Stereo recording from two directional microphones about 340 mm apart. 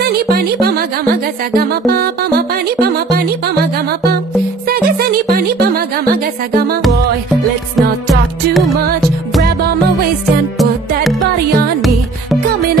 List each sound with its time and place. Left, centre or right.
0.0 s music: right
4.6 s music: right
8.1 s music: centre